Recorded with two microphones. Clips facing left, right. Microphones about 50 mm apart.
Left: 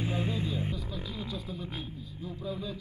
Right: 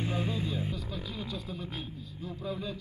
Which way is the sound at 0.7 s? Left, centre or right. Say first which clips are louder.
Even; centre.